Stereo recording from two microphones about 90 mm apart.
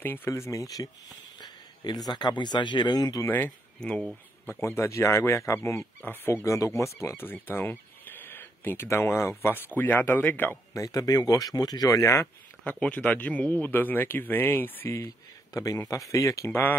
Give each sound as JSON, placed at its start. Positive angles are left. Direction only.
{"t": 0.0, "sound": "speech", "side_deg": 25}
{"t": 2.0, "sound": "speech", "side_deg": 55}
{"t": 3.3, "sound": "speech", "side_deg": 20}
{"t": 10.7, "sound": "speech", "side_deg": 35}
{"t": 12.6, "sound": "speech", "side_deg": 15}
{"t": 15.5, "sound": "speech", "side_deg": 40}